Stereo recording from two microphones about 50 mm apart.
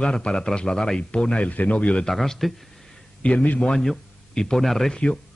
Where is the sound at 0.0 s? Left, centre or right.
Centre.